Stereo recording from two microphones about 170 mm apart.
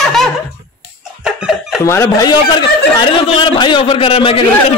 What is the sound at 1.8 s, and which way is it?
A man's voice, 15° left (ahead or behind).